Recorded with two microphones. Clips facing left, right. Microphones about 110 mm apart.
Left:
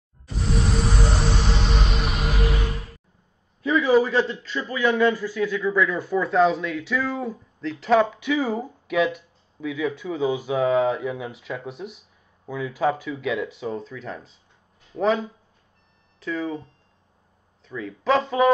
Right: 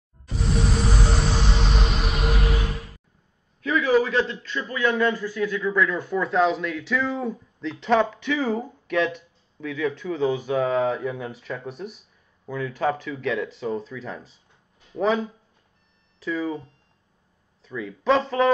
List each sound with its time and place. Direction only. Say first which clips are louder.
0.3 s music: even; centre (ahead or behind)
3.7 s a man's voice: left 2 dB; 25° left (ahead or behind)
4.0 s speech: left 1 dB; 15° left (ahead or behind)